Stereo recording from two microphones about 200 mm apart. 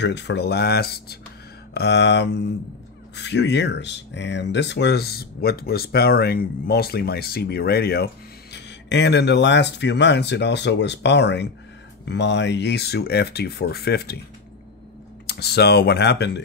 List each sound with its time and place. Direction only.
0.0 s speech: 60° left (ahead or behind)
15.2 s speech: 55° left (ahead or behind)